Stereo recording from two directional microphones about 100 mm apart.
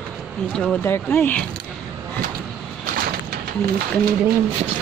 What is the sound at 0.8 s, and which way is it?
Speech, 20° left (ahead or behind).